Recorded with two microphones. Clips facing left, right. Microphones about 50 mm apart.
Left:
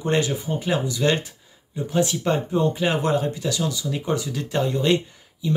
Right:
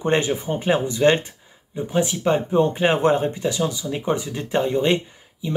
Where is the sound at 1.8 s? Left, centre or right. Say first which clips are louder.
Even; centre.